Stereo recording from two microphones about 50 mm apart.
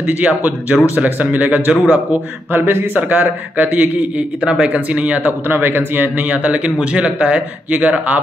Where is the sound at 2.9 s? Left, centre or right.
Right.